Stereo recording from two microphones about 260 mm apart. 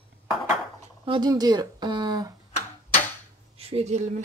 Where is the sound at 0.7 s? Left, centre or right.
Centre.